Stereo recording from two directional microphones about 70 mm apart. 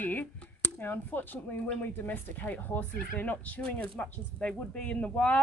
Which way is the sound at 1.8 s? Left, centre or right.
Left.